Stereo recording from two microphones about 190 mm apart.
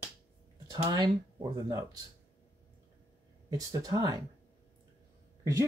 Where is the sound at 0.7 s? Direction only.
20° right (ahead or behind).